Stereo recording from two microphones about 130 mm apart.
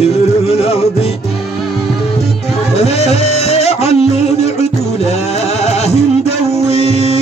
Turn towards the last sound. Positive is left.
turn(degrees=55)  # may be behind; listen again after turning